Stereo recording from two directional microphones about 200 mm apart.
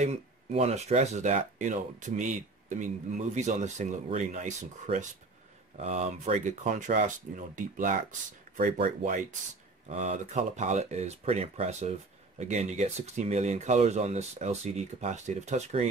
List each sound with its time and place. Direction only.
0.0 s speech: 35° right (ahead or behind)